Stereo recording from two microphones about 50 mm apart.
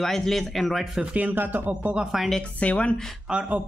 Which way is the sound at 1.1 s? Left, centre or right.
Right.